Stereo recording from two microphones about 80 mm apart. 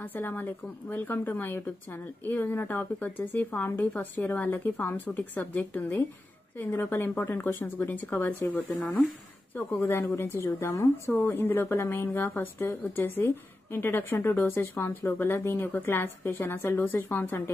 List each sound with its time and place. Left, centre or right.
0.1 s speech: left
6.7 s speech: left
9.7 s a woman's voice: left
11.1 s speech: left